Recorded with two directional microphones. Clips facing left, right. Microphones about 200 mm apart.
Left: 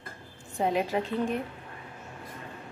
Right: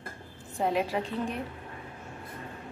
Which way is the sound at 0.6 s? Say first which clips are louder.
Left 1 dB; centre (ahead or behind).